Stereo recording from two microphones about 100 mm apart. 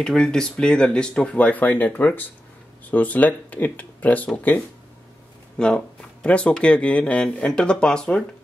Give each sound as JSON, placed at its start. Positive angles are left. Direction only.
{"t": 0.0, "sound": "speech", "side_deg": 5}